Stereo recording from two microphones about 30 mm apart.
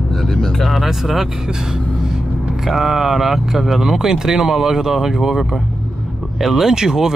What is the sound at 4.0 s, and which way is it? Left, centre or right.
Speech, centre.